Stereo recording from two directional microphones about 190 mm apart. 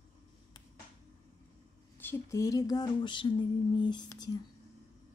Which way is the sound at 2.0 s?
10° left (ahead or behind).